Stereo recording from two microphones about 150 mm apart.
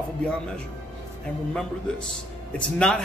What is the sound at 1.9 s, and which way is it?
A man's voice, 5° left (ahead or behind).